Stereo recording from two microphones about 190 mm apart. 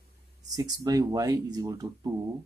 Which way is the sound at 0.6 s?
20° right (ahead or behind).